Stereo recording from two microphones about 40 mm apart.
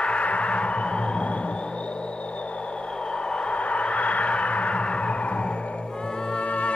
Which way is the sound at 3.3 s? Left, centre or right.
Left.